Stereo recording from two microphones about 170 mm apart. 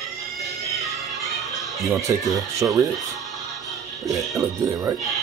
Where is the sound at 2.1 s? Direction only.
15° right (ahead or behind).